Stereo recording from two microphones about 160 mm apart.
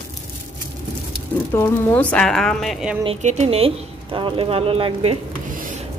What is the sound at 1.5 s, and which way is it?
A woman's voice, 15° left (ahead or behind).